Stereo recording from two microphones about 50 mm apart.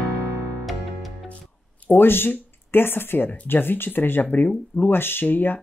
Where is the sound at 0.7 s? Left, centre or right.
Centre.